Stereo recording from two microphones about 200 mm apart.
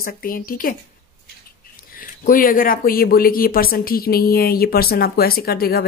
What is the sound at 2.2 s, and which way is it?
A woman's voice, 45° left (ahead or behind).